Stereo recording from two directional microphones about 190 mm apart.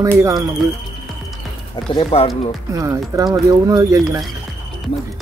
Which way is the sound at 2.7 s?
15° right (ahead or behind).